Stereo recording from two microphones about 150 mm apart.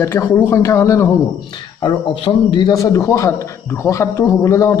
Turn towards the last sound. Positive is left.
turn(degrees=20)  # may be behind; listen again after turning